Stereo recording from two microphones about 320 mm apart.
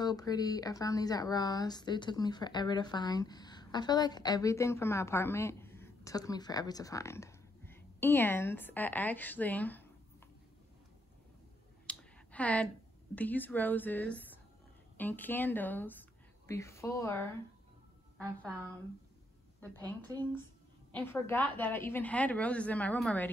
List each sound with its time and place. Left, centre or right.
0.0 s speech: centre
11.9 s clicking: centre
13.1 s a woman's voice: centre
20.9 s a woman's voice: centre